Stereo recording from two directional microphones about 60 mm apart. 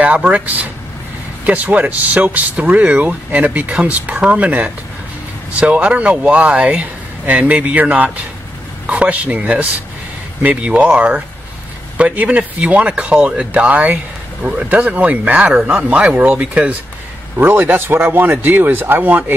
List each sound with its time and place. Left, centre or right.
0.0 s speech: right
17.4 s speech: right